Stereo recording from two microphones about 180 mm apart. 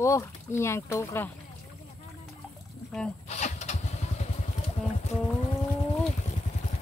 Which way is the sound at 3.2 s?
40° left (ahead or behind).